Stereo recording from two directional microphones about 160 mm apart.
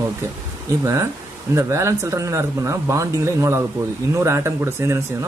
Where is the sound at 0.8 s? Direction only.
20° right (ahead or behind).